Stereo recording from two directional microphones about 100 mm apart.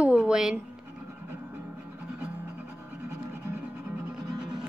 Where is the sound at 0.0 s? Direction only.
10° right (ahead or behind).